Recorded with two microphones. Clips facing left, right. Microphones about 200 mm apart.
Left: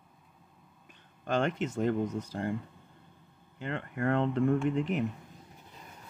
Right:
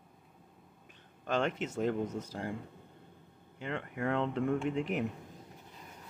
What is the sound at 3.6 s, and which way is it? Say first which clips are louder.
Speech: left 3 dB; 5° right (ahead or behind).